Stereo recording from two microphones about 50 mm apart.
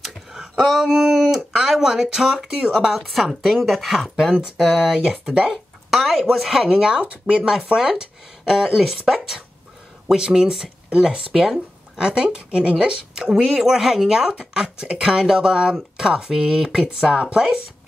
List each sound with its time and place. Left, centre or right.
0.3 s a sound: centre
1.3 s a woman's voice: centre
6.7 s speech: centre
8.7 s a woman's voice: centre
10.9 s speech: right
12.1 s a woman's voice: right